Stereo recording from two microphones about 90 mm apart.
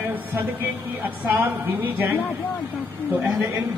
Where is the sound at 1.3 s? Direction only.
20° right (ahead or behind).